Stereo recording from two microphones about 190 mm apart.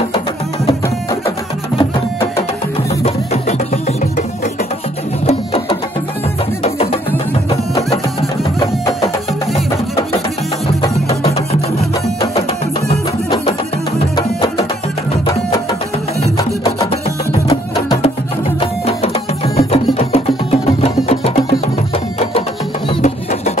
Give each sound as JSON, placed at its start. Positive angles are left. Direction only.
{"t": 3.0, "sound": "music", "side_deg": 35}
{"t": 5.2, "sound": "music", "side_deg": 30}
{"t": 11.1, "sound": "music", "side_deg": 30}
{"t": 19.4, "sound": "music", "side_deg": 30}
{"t": 22.8, "sound": "music", "side_deg": 35}